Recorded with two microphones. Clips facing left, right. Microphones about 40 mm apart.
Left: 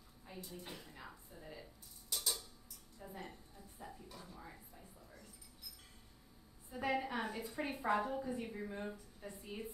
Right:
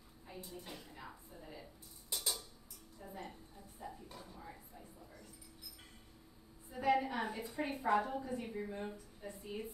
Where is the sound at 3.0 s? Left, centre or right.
Centre.